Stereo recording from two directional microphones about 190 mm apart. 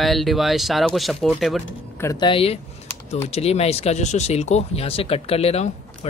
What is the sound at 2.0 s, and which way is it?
Speech, 20° left (ahead or behind).